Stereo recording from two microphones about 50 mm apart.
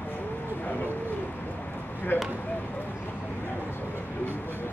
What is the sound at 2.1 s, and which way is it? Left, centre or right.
Speech, left.